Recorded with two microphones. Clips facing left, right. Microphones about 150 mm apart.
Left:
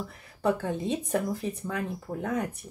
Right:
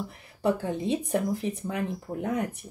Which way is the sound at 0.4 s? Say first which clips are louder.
Right 1 dB; 15° right (ahead or behind).